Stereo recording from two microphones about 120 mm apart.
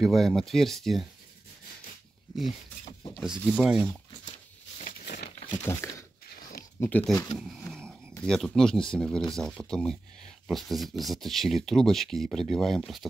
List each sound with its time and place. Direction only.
0.0 s speech: centre (ahead or behind)
3.3 s speech: 5° right (ahead or behind)
4.7 s a sound: 90° left
5.6 s speech: 20° left (ahead or behind)
7.3 s speech: 5° right (ahead or behind)
7.6 s a sound: 5° left (ahead or behind)
8.2 s speech: 5° left (ahead or behind)